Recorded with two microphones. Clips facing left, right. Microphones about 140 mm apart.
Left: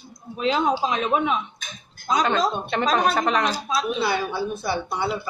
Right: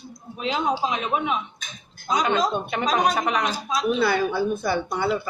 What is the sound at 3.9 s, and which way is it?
A woman's voice, 50° right (ahead or behind).